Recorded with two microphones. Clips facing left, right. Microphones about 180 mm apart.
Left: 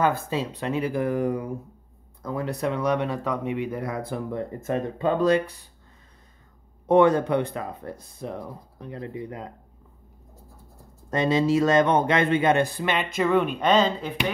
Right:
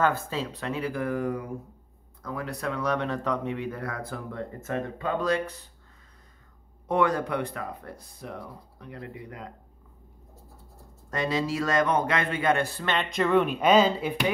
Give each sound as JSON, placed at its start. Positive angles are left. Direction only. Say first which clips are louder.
{"t": 0.0, "sound": "a man's voice", "louder": "left 2 dB", "side_deg": 15}
{"t": 6.9, "sound": "a man's voice", "louder": "left 7 dB", "side_deg": 25}
{"t": 11.1, "sound": "a man's voice", "louder": "left 6 dB", "side_deg": 25}